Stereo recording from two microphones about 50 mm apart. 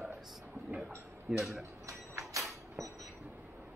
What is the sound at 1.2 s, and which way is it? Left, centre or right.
Speech, centre.